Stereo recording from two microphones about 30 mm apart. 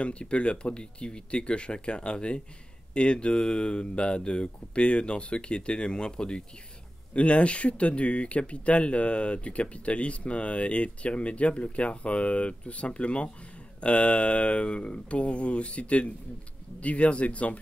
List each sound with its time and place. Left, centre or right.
0.0 s speech: left
7.2 s speech: left